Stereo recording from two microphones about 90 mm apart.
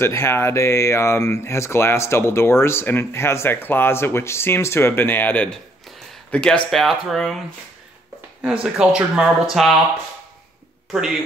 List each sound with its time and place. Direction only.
0.0 s speech: 30° left (ahead or behind); by 6.6 s 15° left (ahead or behind)
6.7 s speech: centre (ahead or behind)
8.7 s speech: 10° right (ahead or behind)
10.9 s speech: 5° right (ahead or behind)